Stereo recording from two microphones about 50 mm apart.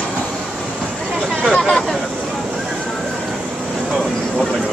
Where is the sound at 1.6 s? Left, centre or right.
Centre.